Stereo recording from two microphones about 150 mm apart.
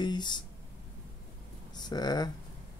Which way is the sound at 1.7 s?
30° left (ahead or behind).